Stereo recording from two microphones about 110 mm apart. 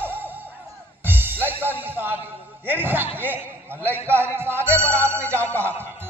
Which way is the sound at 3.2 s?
15° right (ahead or behind).